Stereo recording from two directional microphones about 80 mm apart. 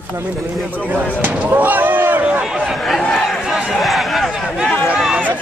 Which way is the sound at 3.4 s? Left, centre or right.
Centre.